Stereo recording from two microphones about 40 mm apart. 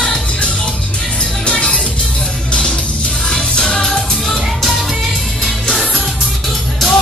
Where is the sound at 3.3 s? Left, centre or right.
Centre.